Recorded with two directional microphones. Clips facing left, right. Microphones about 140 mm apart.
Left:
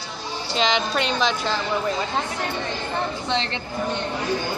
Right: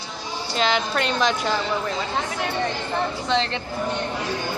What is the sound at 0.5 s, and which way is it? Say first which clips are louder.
A woman's voice: even; 5° right (ahead or behind).